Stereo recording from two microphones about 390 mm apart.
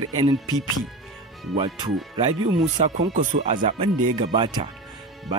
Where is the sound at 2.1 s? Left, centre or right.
Centre.